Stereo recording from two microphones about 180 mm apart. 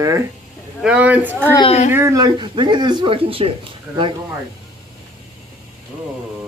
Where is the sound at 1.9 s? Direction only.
15° right (ahead or behind).